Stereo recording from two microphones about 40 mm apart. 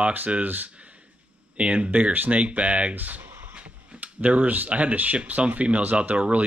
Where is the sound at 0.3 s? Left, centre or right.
Right.